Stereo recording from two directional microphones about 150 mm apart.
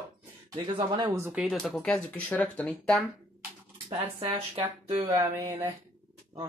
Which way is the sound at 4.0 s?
35° right (ahead or behind).